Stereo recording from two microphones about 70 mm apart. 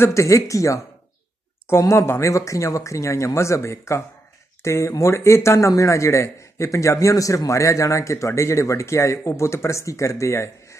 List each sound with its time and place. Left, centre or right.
0.0 s a man's voice: left